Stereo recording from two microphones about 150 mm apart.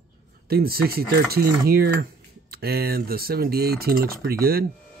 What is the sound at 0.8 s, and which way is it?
Speech, 90° right.